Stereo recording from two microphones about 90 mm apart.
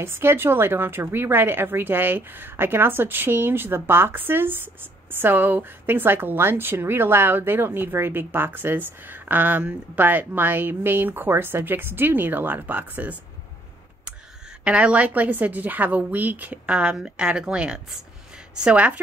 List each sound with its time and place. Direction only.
0.0 s speech: 25° right (ahead or behind)
14.6 s a woman's voice: 15° right (ahead or behind)